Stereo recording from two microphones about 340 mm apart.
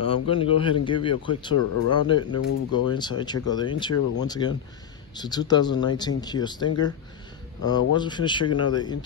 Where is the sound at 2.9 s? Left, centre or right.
Centre.